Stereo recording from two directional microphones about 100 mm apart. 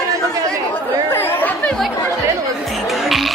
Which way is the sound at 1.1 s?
20° left (ahead or behind).